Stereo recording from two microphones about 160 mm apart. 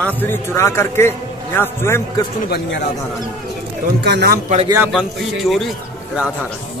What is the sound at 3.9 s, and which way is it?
Speech, 90° right.